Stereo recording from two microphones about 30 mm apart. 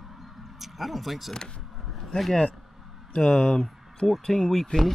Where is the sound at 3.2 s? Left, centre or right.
Left.